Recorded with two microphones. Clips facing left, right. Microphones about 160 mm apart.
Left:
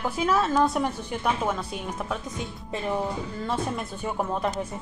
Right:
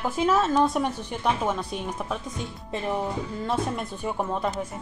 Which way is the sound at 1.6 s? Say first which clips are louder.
Right 1 dB; 10° right (ahead or behind).